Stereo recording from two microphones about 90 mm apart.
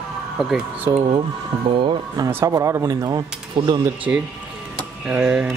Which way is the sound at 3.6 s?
90° right.